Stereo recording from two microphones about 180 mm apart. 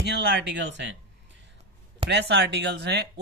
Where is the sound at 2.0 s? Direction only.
70° right (ahead or behind).